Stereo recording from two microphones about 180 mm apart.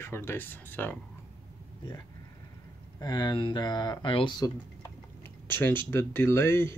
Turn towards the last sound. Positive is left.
turn(degrees=15)  # may be behind; listen again after turning